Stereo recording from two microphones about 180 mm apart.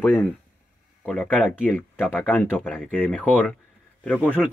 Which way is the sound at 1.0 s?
5° left (ahead or behind).